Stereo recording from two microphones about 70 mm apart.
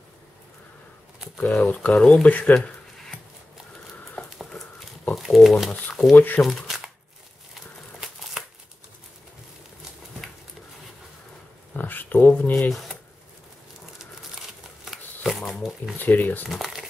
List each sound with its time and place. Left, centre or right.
1.5 s speech: left
5.1 s pigeon: centre
5.7 s speech: centre
6.1 s speech: left
6.4 s shuffling cards: centre
8.4 s crumpling: centre
10.2 s a sound: centre
11.7 s a sound: left
12.6 s speech: centre
14.9 s a sound: centre
16.0 s speech: left
16.4 s speech: centre